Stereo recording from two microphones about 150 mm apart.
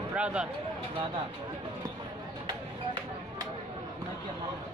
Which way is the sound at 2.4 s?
30° right (ahead or behind).